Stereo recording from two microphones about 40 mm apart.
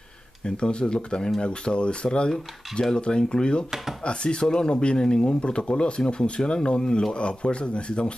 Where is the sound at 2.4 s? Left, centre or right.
Centre.